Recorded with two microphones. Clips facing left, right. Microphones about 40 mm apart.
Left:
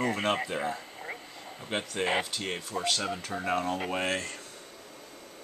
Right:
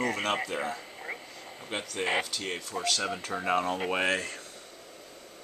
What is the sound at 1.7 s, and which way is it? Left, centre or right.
Speech, centre.